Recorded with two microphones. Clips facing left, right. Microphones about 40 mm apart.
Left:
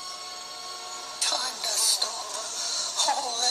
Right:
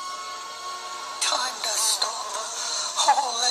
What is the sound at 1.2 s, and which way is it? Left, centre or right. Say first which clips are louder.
Speech: right 4 dB; right.